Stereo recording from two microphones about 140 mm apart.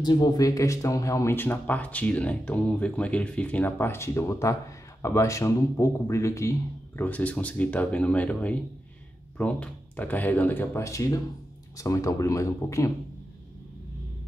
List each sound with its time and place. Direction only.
0.0 s speech: 30° left (ahead or behind)